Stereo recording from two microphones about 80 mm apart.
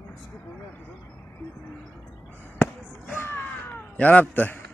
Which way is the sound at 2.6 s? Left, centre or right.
Left.